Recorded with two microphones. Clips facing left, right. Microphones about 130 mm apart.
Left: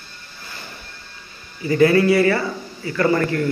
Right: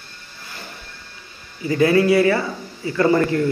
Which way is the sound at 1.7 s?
10° right (ahead or behind).